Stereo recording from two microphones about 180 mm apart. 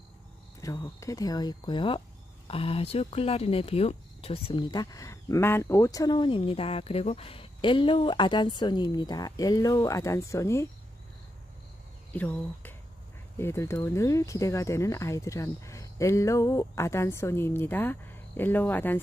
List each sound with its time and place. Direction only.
0.6 s speech: 20° left (ahead or behind)
12.1 s speech: 10° left (ahead or behind)